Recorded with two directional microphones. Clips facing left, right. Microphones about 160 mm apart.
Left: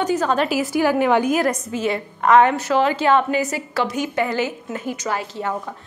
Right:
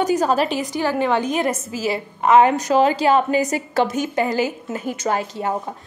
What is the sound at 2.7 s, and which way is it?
A woman's voice, 35° right (ahead or behind).